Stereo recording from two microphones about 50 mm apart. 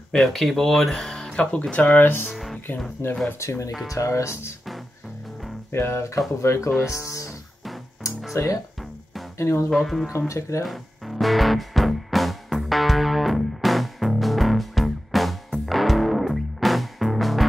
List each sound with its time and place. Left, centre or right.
0.1 s speech: centre; by 2.3 s left
3.3 s speech: left
5.7 s speech: left
6.9 s speech: left
8.3 s speech: left
9.4 s speech: left
9.7 s speech: centre
10.1 s speech: left
10.6 s music: centre